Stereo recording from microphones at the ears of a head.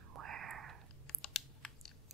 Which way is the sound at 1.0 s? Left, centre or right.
Left.